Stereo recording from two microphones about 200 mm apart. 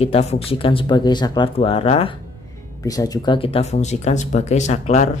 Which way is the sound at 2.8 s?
15° left (ahead or behind).